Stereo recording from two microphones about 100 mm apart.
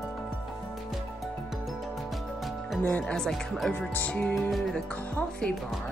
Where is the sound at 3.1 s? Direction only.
5° left (ahead or behind).